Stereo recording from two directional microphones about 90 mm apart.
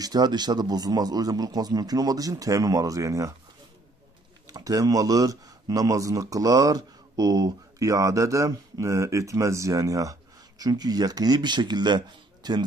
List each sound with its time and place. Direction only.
0.0 s speech: 50° right (ahead or behind)
4.5 s speech: 40° right (ahead or behind)